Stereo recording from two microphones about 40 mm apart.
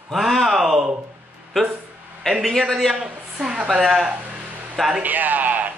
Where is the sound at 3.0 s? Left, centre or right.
Centre.